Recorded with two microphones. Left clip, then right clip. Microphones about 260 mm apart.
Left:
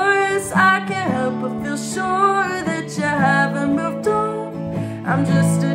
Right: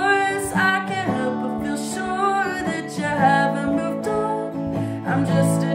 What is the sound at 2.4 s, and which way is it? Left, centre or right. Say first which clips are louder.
Music: left 3 dB; centre.